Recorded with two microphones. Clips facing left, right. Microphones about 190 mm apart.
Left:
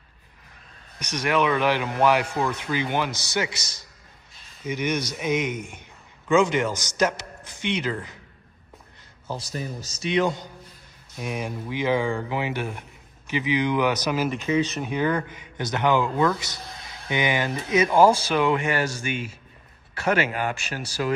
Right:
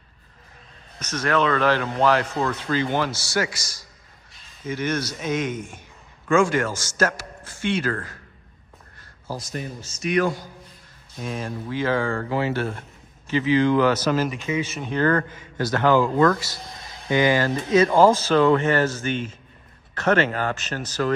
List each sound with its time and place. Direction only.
0.9 s a man's voice: 15° left (ahead or behind)
9.8 s speech: 40° left (ahead or behind)
10.0 s a man's voice: 25° left (ahead or behind)
14.5 s speech: 10° right (ahead or behind)
14.8 s speech: 10° left (ahead or behind)